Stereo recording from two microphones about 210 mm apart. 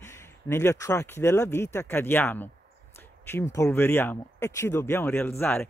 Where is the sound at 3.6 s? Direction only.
10° left (ahead or behind).